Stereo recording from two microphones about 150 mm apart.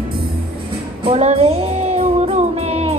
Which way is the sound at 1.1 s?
45° right (ahead or behind).